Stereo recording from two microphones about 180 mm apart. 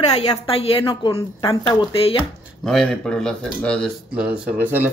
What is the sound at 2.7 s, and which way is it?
Speech, 5° left (ahead or behind).